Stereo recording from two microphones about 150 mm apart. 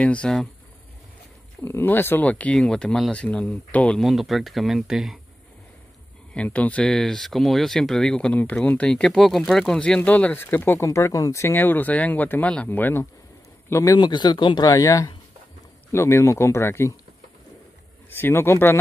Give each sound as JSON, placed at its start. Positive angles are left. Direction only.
{"t": 0.0, "sound": "speech", "side_deg": 5}
{"t": 1.6, "sound": "speech", "side_deg": 15}
{"t": 6.3, "sound": "speech", "side_deg": 10}
{"t": 18.1, "sound": "speech", "side_deg": 15}